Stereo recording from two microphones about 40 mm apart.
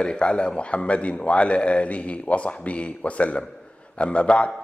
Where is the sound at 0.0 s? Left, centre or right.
Left.